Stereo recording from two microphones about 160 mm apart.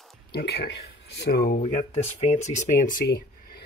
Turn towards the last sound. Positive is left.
turn(degrees=75)  # may be behind; listen again after turning